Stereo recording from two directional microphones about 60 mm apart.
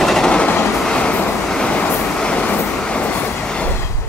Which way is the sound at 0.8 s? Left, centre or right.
Centre.